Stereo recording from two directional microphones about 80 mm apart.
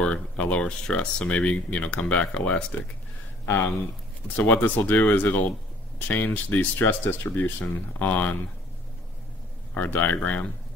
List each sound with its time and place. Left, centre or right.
0.0 s speech: centre
3.4 s speech: left
9.8 s speech: left